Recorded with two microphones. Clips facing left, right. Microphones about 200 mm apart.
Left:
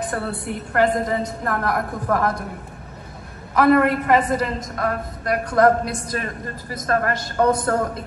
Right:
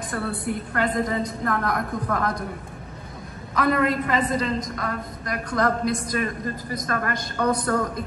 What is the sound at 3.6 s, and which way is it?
A woman's voice, 60° left (ahead or behind).